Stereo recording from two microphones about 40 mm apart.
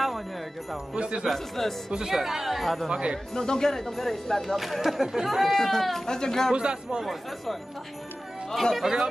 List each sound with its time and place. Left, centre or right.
0.9 s a man's voice: right
1.3 s speech: centre
1.9 s speech: centre
2.9 s a man's voice: right
3.3 s speech: centre
5.5 s speech: centre
6.5 s a man's voice: right
8.8 s a man's voice: right